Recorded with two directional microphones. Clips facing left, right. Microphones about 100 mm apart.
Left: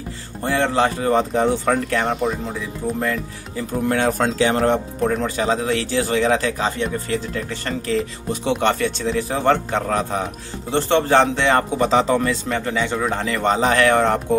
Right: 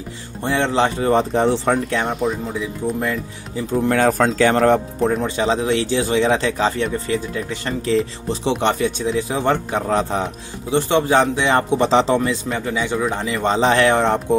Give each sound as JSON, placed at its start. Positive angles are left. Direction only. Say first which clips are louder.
{"t": 0.4, "sound": "speech", "louder": "even", "side_deg": -20}
{"t": 2.0, "sound": "speech", "louder": "even", "side_deg": 0}
{"t": 3.9, "sound": "speech", "louder": "right 3 dB", "side_deg": -40}
{"t": 5.0, "sound": "speech", "louder": "right 1 dB", "side_deg": -25}
{"t": 10.7, "sound": "speech", "louder": "even", "side_deg": -10}
{"t": 11.8, "sound": "speech", "louder": "right 1 dB", "side_deg": -25}
{"t": 12.4, "sound": "speech", "louder": "even", "side_deg": -10}